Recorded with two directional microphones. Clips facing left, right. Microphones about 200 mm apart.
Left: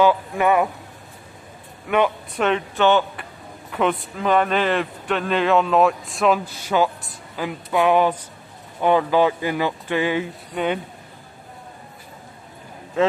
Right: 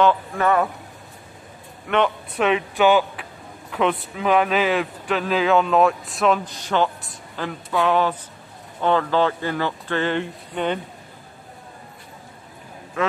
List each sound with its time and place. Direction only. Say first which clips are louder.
0.0 s speech: left 1 dB; 10° left (ahead or behind)
1.9 s speech: left 1 dB; 5° left (ahead or behind)
2.3 s speech: right 3 dB; 5° right (ahead or behind)
13.0 s a man's voice: left 4 dB; 25° left (ahead or behind)